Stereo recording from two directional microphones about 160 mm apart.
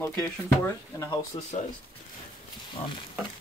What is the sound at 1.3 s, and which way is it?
Speech, 30° left (ahead or behind).